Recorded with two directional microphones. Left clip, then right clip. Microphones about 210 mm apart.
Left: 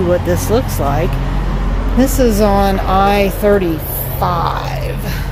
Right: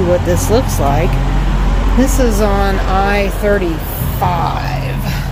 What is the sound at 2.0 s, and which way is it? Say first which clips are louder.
Speech: left 2 dB; 20° left (ahead or behind).